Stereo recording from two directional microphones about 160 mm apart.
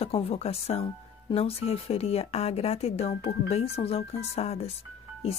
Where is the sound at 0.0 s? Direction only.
35° left (ahead or behind).